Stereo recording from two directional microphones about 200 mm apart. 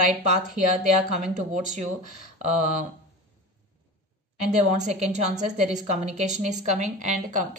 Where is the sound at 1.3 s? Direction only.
40° right (ahead or behind).